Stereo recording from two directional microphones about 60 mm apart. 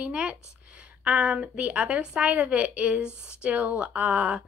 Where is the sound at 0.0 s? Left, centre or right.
Centre.